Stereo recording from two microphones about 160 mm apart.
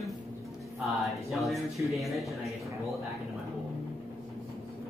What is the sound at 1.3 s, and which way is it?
Speech, centre (ahead or behind).